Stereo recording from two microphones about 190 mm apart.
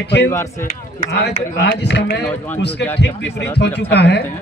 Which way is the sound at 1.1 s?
60° left (ahead or behind).